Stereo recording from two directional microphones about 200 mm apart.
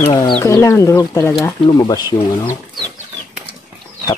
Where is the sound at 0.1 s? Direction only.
20° left (ahead or behind).